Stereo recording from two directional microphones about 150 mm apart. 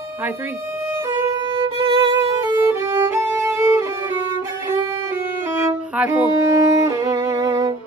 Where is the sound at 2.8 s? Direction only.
15° right (ahead or behind).